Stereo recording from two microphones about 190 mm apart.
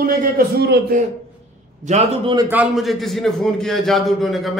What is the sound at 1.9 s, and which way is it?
Speech, 30° right (ahead or behind).